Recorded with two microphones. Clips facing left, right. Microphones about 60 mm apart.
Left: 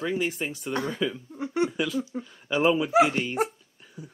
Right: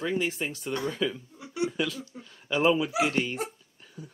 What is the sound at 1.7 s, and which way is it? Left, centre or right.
Speech, centre.